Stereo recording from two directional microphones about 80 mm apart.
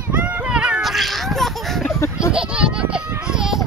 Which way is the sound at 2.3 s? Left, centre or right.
Centre.